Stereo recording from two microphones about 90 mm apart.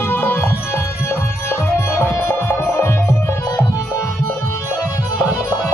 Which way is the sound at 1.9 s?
25° left (ahead or behind).